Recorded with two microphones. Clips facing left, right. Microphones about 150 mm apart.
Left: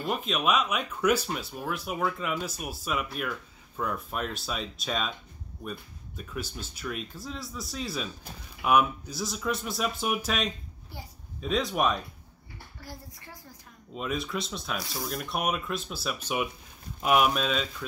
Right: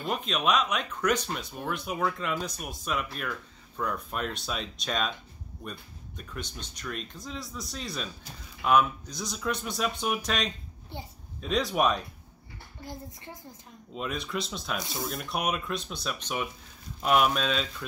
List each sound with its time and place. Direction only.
0.0 s speech: centre (ahead or behind)
12.8 s a woman's voice: 20° right (ahead or behind)
13.9 s speech: centre (ahead or behind)